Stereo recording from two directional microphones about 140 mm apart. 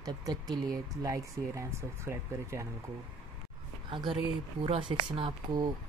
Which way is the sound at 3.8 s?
35° right (ahead or behind).